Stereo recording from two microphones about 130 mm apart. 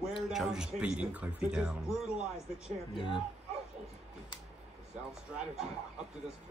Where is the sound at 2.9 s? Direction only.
40° left (ahead or behind).